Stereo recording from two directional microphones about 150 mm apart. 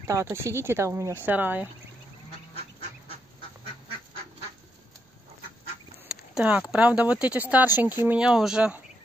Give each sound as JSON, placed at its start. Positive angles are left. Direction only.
{"t": 0.0, "sound": "speech", "side_deg": -20}
{"t": 6.0, "sound": "speech", "side_deg": -5}